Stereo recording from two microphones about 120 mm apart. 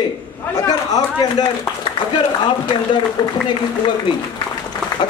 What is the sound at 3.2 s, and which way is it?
Speech, 35° left (ahead or behind).